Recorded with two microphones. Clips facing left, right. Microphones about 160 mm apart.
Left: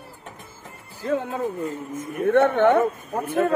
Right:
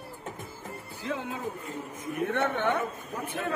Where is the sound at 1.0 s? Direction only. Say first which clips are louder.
Left 9 dB; 55° left (ahead or behind).